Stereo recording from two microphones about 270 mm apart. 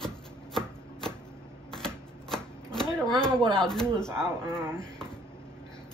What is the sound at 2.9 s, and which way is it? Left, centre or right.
Speech, centre.